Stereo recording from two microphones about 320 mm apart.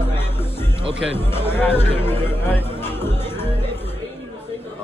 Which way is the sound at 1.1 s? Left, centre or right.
Centre.